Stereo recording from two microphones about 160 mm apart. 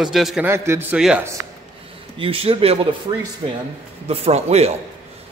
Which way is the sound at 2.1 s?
35° right (ahead or behind).